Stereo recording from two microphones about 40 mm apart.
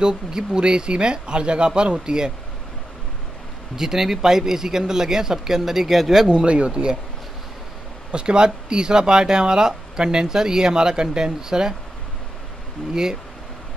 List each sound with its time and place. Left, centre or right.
0.0 s speech: centre
3.7 s speech: centre
6.2 s speech: right
8.1 s speech: right
12.9 s speech: centre